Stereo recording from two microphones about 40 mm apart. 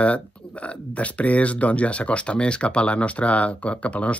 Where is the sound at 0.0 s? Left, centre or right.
Left.